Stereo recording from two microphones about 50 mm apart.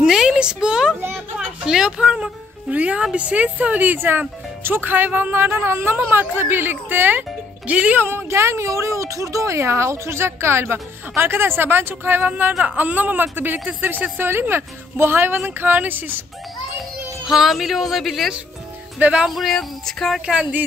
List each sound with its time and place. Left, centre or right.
0.0 s a sound: centre
1.7 s speech: centre
2.7 s speech: right
5.9 s speech: right
7.6 s speech: right
8.0 s speech: right
8.3 s a woman's voice: right
17.3 s speech: centre
18.9 s speech: right
19.2 s speech: centre